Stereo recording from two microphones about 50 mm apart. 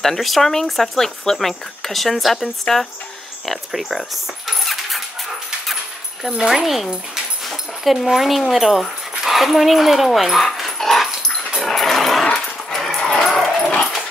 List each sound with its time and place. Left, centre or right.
0.0 s speech: centre
6.4 s speech: centre
11.5 s dog: centre